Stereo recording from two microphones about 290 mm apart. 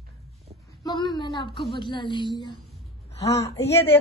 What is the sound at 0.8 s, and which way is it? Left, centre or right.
A woman's voice, centre.